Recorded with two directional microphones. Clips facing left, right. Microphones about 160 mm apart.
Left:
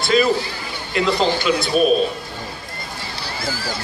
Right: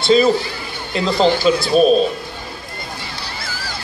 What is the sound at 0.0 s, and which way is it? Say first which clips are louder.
A man's voice: right 4 dB; 25° right (ahead or behind).